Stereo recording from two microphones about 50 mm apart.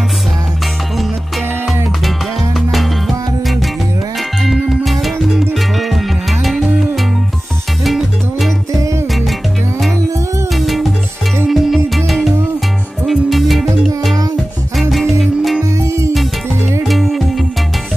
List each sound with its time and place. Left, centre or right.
4.5 s music: centre
10.5 s music: centre
15.8 s music: right
16.8 s music: centre